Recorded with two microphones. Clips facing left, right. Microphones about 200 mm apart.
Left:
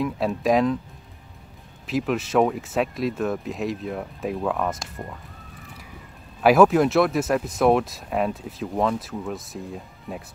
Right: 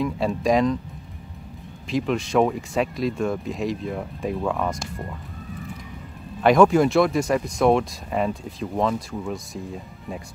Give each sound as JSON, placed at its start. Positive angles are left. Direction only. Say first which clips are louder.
{"t": 0.0, "sound": "speech", "louder": "right 1 dB", "side_deg": 0}
{"t": 1.9, "sound": "speech", "louder": "right 1 dB", "side_deg": 5}
{"t": 6.4, "sound": "speech", "louder": "even", "side_deg": 5}